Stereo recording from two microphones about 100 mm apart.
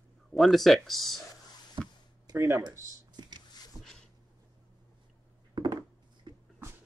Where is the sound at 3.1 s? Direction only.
45° right (ahead or behind).